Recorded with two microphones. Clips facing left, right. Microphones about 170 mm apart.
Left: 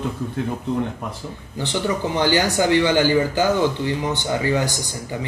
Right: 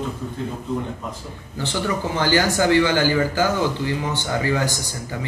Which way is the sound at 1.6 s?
15° left (ahead or behind).